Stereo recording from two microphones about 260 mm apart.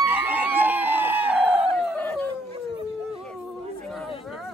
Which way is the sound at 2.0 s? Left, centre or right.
Centre.